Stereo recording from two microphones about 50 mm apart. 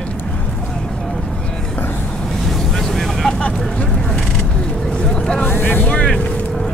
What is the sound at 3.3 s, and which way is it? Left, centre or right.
Vehicle, left.